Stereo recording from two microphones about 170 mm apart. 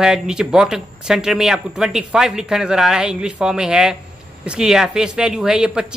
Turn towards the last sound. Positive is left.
turn(degrees=-5)  # may be behind; listen again after turning